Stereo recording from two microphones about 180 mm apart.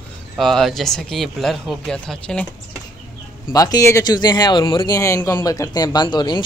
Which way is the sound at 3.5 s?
20° left (ahead or behind).